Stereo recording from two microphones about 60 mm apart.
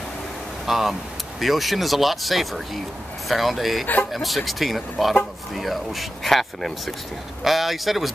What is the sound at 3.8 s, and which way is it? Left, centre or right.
Speech, left.